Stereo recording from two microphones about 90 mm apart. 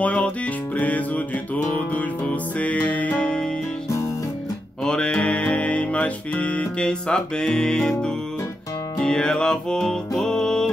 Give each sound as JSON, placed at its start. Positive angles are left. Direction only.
{"t": 0.0, "sound": "music", "side_deg": 15}
{"t": 4.8, "sound": "music", "side_deg": 10}